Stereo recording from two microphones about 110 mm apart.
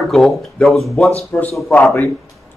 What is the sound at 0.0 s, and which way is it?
Speech, centre (ahead or behind).